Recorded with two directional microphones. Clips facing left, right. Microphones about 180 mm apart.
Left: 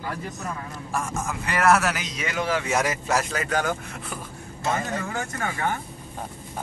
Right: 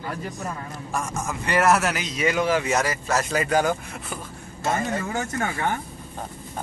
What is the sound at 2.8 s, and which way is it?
Speech, 15° left (ahead or behind).